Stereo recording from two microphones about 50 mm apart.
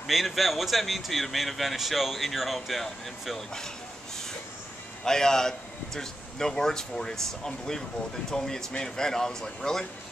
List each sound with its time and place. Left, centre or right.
0.0 s speech: centre
5.0 s a man's voice: centre